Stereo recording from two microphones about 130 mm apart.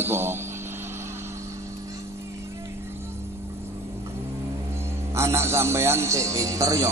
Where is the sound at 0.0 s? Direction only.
20° right (ahead or behind).